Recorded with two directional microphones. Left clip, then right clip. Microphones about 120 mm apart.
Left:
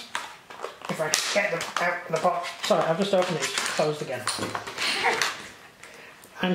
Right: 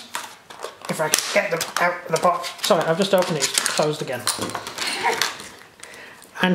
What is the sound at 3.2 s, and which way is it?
Speech, 20° right (ahead or behind).